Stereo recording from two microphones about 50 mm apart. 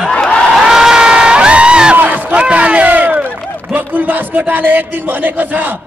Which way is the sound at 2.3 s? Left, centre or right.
Right.